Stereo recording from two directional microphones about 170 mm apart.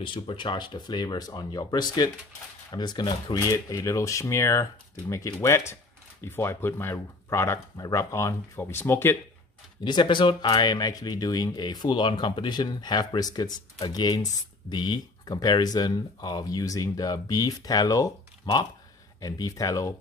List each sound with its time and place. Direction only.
0.0 s speech: 30° left (ahead or behind); by 9.2 s 15° left (ahead or behind)
9.8 s speech: 25° left (ahead or behind)